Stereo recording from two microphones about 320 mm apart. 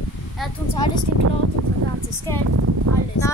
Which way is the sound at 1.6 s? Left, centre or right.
Right.